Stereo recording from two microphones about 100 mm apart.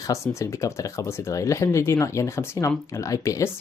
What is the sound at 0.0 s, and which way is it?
Speech, 30° left (ahead or behind).